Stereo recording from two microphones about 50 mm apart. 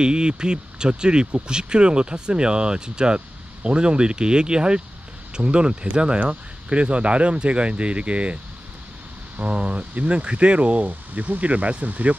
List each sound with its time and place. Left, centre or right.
0.0 s speech: centre
9.4 s speech: right